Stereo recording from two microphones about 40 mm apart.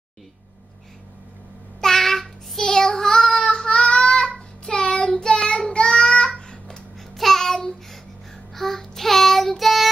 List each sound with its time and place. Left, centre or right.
1.8 s child singing: centre
3.7 s child singing: left
7.2 s child singing: centre